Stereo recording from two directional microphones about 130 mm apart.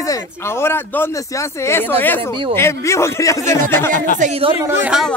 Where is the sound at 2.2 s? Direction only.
45° right (ahead or behind).